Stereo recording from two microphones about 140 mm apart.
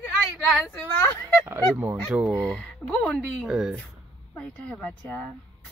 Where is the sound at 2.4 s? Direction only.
5° left (ahead or behind).